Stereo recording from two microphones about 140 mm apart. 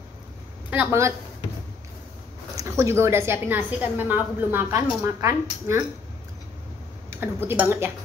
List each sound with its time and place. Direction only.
0.7 s speech: 15° right (ahead or behind)
2.8 s a woman's voice: 20° right (ahead or behind)
7.1 s a woman's voice: 15° right (ahead or behind)